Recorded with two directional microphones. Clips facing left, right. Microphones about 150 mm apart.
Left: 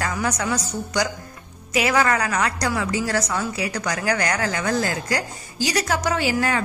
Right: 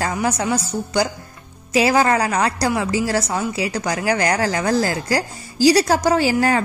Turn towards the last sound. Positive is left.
turn(degrees=-35)  # may be behind; listen again after turning